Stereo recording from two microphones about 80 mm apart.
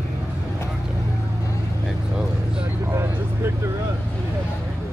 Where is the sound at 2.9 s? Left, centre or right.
Right.